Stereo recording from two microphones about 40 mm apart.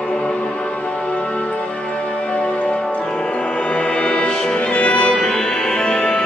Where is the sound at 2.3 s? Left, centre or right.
Left.